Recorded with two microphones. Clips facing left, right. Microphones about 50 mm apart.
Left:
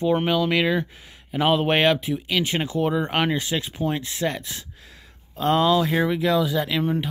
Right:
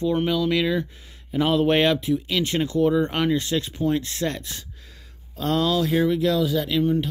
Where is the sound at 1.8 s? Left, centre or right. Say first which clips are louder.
Even; centre.